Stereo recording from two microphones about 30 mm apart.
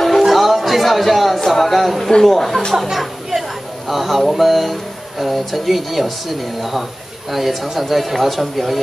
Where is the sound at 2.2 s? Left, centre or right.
Centre.